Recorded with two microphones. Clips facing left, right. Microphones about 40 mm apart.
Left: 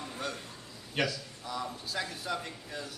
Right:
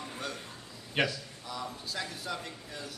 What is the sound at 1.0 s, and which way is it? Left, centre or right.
Speech, right.